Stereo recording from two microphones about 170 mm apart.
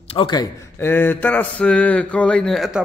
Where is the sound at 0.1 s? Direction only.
25° left (ahead or behind).